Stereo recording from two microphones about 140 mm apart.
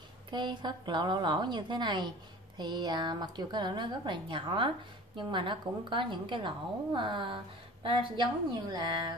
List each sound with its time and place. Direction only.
0.3 s a woman's voice: 30° right (ahead or behind)